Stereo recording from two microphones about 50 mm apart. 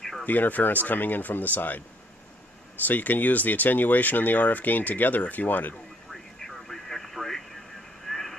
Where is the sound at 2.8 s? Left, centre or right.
Left.